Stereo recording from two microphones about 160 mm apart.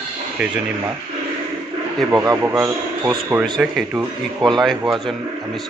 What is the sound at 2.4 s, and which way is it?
A man's voice, 10° right (ahead or behind).